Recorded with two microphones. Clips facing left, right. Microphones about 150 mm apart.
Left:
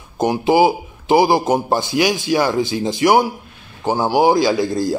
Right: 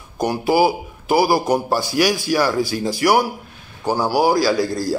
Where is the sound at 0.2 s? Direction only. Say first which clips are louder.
Left 3 dB; 20° left (ahead or behind).